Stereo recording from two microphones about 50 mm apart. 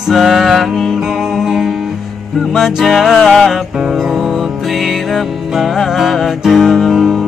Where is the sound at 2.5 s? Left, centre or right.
Centre.